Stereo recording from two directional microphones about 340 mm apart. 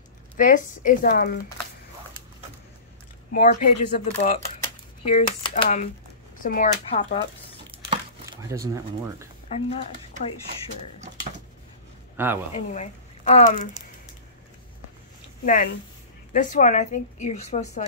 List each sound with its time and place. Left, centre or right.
0.4 s speech: left
3.3 s speech: left
7.9 s speech: centre
9.5 s speech: centre
12.2 s speech: centre
12.5 s speech: centre
15.4 s speech: left